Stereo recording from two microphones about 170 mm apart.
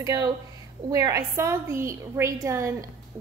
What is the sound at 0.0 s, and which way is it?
A woman's voice, 25° right (ahead or behind).